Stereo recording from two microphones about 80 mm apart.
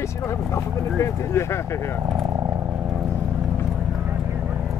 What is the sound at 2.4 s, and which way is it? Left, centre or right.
Vehicle, right.